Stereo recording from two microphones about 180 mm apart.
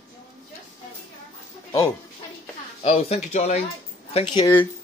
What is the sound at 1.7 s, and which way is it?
Dog, 15° left (ahead or behind).